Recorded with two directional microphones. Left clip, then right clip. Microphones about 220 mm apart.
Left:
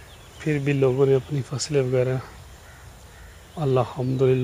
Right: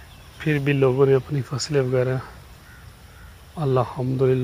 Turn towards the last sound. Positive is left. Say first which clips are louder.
# even
turn(degrees=0)  # may be behind; listen again after turning